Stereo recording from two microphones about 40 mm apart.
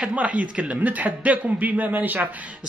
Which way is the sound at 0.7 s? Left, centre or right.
Right.